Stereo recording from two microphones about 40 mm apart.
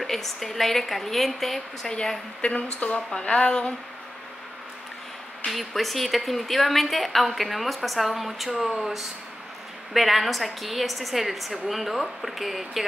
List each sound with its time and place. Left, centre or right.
0.0 s a woman's voice: centre
2.4 s a woman's voice: left
5.5 s a woman's voice: centre